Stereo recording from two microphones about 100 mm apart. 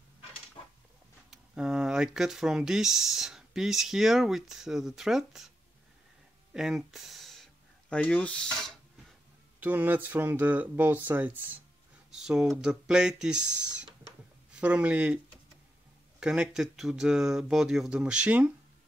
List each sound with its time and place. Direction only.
1.3 s speech: 5° right (ahead or behind)
6.5 s speech: 5° right (ahead or behind)
7.9 s filing: 10° left (ahead or behind)
9.6 s speech: 20° right (ahead or behind)
12.1 s speech: 5° right (ahead or behind)
16.2 s speech: 5° right (ahead or behind)